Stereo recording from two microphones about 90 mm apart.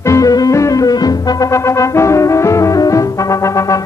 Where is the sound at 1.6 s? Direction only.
35° left (ahead or behind).